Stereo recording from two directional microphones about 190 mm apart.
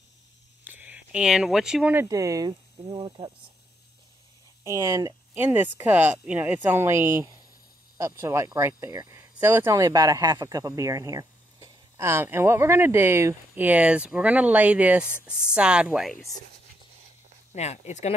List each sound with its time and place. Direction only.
0.7 s speech: 10° right (ahead or behind)
4.6 s speech: 15° right (ahead or behind); by 16.3 s centre (ahead or behind)
17.6 s speech: 35° left (ahead or behind)